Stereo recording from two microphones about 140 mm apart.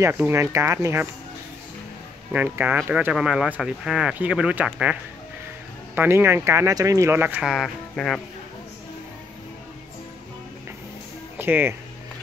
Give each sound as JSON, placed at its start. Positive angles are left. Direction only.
{"t": 0.0, "sound": "speech", "side_deg": -15}
{"t": 2.3, "sound": "speech", "side_deg": -15}
{"t": 5.9, "sound": "speech", "side_deg": -15}
{"t": 7.5, "sound": "speech", "side_deg": 0}
{"t": 11.3, "sound": "speech", "side_deg": -15}